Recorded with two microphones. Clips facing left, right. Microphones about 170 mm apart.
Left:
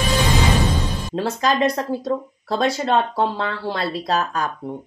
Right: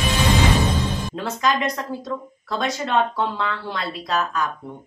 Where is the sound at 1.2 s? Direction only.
35° left (ahead or behind).